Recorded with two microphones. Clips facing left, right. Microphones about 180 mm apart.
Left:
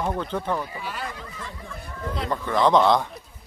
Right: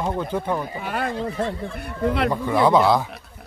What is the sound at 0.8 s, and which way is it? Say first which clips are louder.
Speech: right 7 dB; 55° right (ahead or behind).